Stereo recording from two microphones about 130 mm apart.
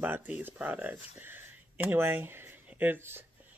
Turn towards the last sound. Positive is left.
turn(degrees=-15)  # may be behind; listen again after turning